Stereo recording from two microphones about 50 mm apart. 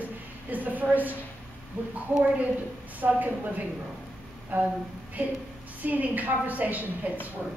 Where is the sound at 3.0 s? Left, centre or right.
Right.